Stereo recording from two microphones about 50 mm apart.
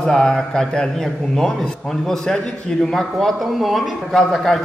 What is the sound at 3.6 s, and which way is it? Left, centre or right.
Speech, centre.